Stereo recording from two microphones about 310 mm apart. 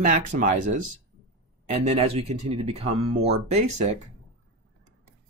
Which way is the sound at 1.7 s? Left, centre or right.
Right.